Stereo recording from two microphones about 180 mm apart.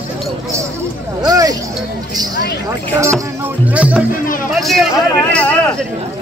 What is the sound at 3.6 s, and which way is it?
Music, 5° right (ahead or behind).